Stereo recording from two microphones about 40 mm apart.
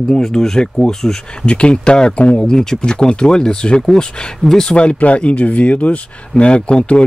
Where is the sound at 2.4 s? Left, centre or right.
Centre.